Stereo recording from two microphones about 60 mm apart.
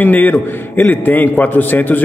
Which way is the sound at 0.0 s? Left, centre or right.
Left.